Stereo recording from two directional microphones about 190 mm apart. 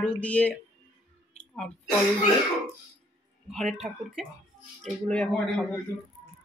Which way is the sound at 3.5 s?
Centre (ahead or behind).